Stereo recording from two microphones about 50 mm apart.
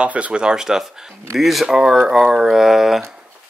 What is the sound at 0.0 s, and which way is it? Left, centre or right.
Speech, right.